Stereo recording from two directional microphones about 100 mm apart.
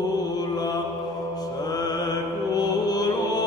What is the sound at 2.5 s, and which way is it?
Music, 40° left (ahead or behind).